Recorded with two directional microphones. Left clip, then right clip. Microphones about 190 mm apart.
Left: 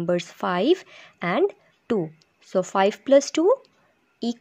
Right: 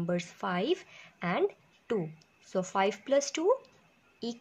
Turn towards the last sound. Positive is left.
turn(degrees=45)  # may be behind; listen again after turning